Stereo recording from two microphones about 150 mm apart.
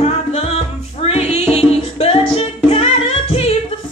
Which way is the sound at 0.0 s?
45° left (ahead or behind).